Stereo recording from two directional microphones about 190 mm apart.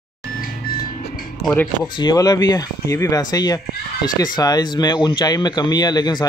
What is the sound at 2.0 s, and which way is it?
Speech, 20° left (ahead or behind).